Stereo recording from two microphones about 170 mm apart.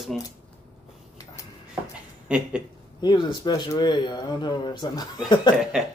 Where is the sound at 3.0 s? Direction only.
25° left (ahead or behind).